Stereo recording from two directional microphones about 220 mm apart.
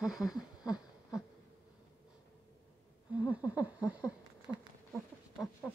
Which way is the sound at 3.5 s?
5° right (ahead or behind).